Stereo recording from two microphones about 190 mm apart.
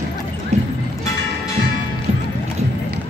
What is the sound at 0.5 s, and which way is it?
Music, 35° right (ahead or behind).